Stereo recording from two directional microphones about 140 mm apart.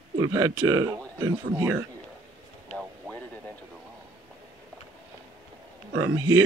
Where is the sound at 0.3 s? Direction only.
25° right (ahead or behind).